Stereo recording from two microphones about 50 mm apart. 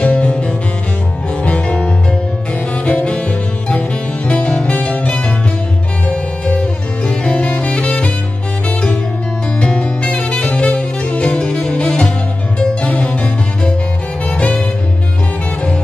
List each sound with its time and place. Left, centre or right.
0.0 s music: left
7.1 s saxophone: left
9.6 s music: left